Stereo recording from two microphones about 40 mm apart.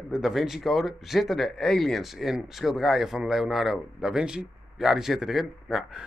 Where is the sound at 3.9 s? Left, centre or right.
Centre.